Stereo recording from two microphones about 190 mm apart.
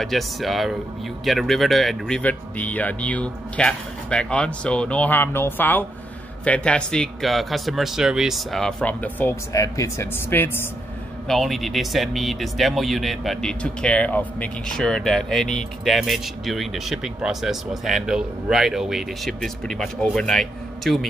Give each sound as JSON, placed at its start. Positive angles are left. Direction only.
{"t": 0.0, "sound": "speech", "side_deg": 0}
{"t": 11.2, "sound": "speech", "side_deg": 0}